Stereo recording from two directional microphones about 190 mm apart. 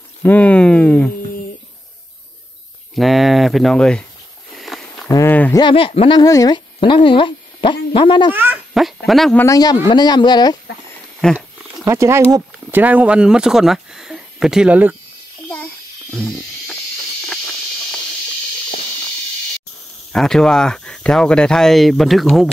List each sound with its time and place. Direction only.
0.2 s speech: 10° left (ahead or behind)
2.9 s speech: centre (ahead or behind)
4.6 s a sound: centre (ahead or behind)
5.6 s speech: 25° left (ahead or behind)
8.4 s a child's voice: 5° right (ahead or behind)
9.4 s speech: 20° left (ahead or behind)
11.3 s speech: 15° right (ahead or behind)
16.1 s a sound: centre (ahead or behind)
20.1 s speech: 5° left (ahead or behind)